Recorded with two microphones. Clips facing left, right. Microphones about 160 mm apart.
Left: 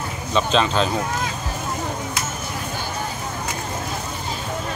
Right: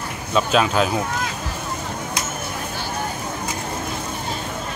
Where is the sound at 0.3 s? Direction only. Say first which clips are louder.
Right 1 dB; 5° right (ahead or behind).